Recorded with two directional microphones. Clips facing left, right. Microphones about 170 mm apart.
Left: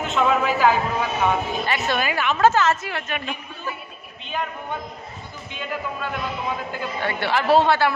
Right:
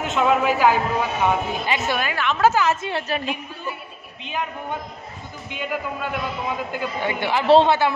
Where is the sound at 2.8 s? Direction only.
30° right (ahead or behind).